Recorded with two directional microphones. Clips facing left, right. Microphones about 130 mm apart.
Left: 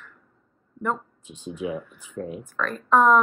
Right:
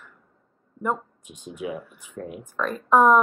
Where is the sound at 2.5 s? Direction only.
15° right (ahead or behind).